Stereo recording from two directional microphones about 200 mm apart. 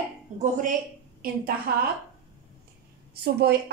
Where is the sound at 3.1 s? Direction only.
55° right (ahead or behind).